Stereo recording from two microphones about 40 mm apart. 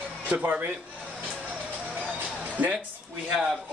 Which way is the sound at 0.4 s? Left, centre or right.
Right.